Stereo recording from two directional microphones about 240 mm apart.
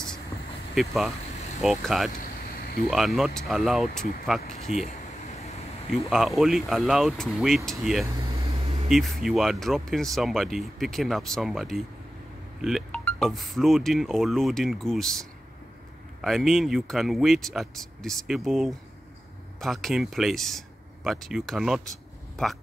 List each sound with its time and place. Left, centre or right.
0.7 s speech: centre
2.2 s a sound: left
2.9 s speech: centre
6.0 s speech: centre
8.3 s a sound: right
8.8 s speech: centre